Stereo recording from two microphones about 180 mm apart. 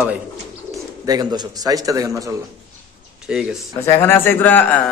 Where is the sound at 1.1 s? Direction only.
20° right (ahead or behind).